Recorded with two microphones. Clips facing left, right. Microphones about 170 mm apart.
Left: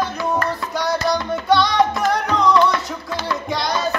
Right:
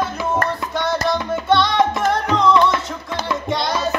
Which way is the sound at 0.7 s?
Centre (ahead or behind).